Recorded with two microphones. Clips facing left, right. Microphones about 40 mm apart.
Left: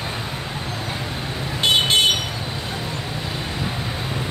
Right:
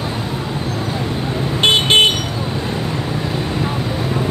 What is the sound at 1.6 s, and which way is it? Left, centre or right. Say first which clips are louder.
Vehicle: right 5 dB; right.